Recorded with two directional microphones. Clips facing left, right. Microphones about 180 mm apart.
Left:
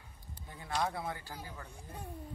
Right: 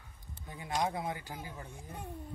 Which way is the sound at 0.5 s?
15° right (ahead or behind).